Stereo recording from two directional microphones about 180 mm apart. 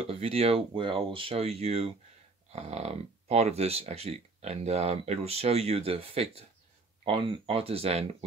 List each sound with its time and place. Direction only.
0.0 s speech: 35° right (ahead or behind)